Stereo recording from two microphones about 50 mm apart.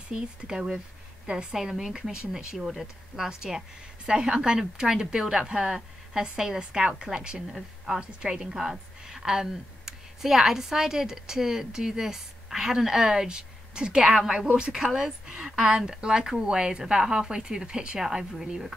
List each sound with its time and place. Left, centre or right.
0.1 s a woman's voice: centre
3.3 s a woman's voice: centre
7.4 s speech: centre
8.0 s a woman's voice: centre